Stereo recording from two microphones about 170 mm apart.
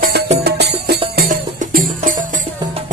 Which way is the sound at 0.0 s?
70° right (ahead or behind).